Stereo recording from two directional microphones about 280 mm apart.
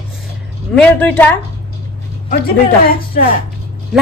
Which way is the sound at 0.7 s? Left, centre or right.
Centre.